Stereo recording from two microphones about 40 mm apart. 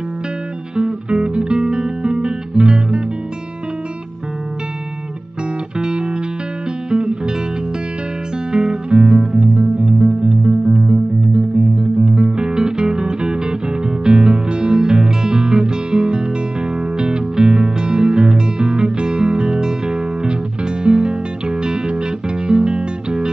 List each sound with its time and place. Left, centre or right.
0.7 s music: right
1.6 s guitar: centre
5.8 s music: right
8.5 s music: centre
12.0 s music: centre